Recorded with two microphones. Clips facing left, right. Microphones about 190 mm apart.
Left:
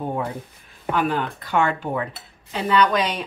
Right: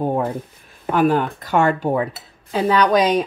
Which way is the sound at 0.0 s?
40° right (ahead or behind).